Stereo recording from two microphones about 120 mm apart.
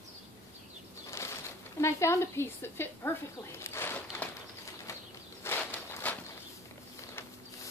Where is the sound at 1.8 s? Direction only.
20° left (ahead or behind).